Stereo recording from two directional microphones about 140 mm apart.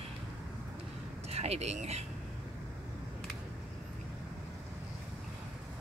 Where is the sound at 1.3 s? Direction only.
50° right (ahead or behind).